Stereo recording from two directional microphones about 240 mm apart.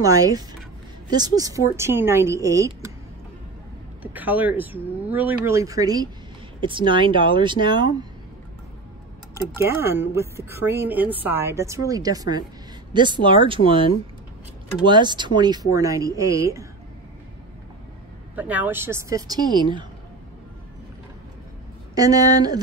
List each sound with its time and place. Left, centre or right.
0.0 s speech: centre
4.0 s speech: centre
9.3 s speech: centre
14.9 s speech: centre
18.3 s speech: centre
21.9 s speech: centre